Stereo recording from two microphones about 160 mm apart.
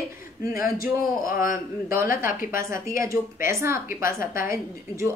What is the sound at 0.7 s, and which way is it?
A man's voice, 60° left (ahead or behind).